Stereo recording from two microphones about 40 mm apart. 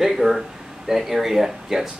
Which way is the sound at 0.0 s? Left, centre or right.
Centre.